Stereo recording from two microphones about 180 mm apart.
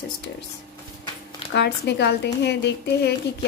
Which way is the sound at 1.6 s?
70° left (ahead or behind).